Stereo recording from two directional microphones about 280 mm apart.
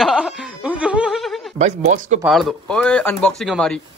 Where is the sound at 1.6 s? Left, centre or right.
Right.